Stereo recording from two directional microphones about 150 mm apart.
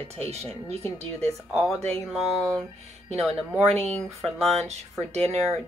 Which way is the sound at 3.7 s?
45° right (ahead or behind).